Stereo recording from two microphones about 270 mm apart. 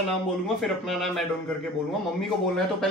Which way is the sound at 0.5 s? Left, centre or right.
Centre.